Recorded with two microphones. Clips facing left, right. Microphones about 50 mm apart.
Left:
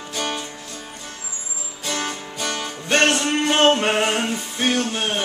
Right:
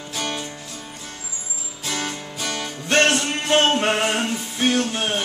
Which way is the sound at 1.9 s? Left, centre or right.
Centre.